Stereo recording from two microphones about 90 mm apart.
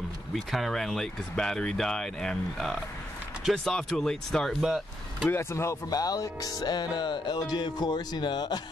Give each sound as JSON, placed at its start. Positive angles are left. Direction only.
{"t": 0.3, "sound": "speech", "side_deg": 0}
{"t": 5.3, "sound": "speech", "side_deg": 30}
{"t": 5.9, "sound": "music", "side_deg": 45}